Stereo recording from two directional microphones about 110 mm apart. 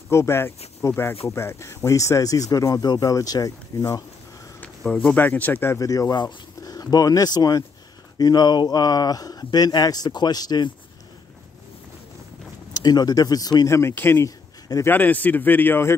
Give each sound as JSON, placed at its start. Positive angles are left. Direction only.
{"t": 0.1, "sound": "speech", "side_deg": 25}
{"t": 5.0, "sound": "a man's voice", "side_deg": 15}
{"t": 5.8, "sound": "speech", "side_deg": 35}
{"t": 12.7, "sound": "speech", "side_deg": 40}
{"t": 13.7, "sound": "a man's voice", "side_deg": 20}